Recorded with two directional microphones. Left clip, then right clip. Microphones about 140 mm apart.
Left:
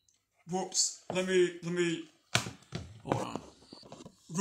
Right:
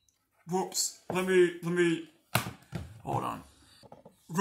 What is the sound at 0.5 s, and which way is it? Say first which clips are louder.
Speech: right 1 dB; 40° right (ahead or behind).